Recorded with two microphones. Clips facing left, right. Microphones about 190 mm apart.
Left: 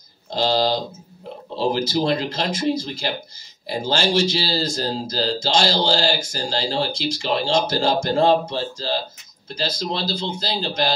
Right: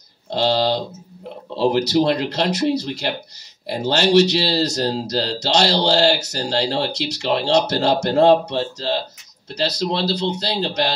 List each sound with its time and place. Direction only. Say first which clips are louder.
1.6 s speech: right 4 dB; 65° right (ahead or behind)